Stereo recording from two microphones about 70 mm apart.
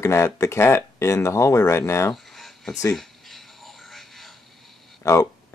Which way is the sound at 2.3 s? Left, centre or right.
Centre.